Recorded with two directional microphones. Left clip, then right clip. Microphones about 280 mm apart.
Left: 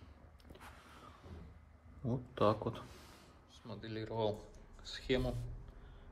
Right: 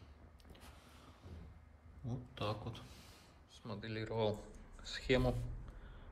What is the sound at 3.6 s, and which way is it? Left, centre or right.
Speech, centre.